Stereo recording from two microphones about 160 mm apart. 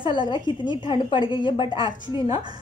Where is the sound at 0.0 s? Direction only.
30° left (ahead or behind).